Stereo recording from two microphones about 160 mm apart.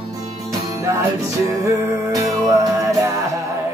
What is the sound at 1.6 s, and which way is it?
Music, 20° right (ahead or behind).